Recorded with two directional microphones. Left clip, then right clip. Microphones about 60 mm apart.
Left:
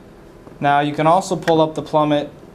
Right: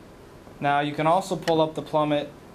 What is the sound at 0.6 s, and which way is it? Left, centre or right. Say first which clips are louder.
Speech: left 7 dB; centre.